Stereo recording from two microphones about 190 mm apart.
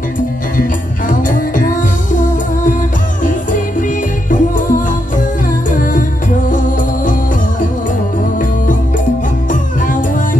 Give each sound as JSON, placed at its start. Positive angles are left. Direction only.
{"t": 0.6, "sound": "music", "side_deg": 45}
{"t": 4.3, "sound": "music", "side_deg": 45}
{"t": 9.5, "sound": "music", "side_deg": 45}